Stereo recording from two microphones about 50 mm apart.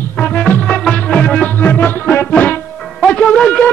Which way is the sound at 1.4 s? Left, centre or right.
Left.